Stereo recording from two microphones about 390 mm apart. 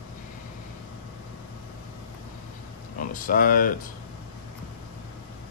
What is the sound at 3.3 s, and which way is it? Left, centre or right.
Speech, left.